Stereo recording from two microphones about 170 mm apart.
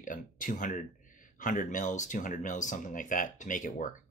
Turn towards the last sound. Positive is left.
turn(degrees=50)  # may be behind; listen again after turning